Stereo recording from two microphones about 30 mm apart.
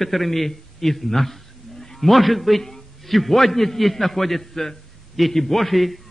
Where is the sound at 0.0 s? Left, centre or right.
Centre.